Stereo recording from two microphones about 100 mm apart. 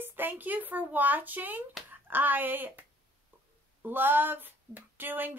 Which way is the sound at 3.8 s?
20° right (ahead or behind).